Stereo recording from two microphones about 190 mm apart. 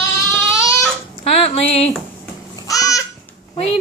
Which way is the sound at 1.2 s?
30° left (ahead or behind).